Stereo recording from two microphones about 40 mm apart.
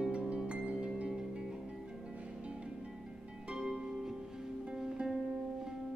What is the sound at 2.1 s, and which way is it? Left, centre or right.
Music, right.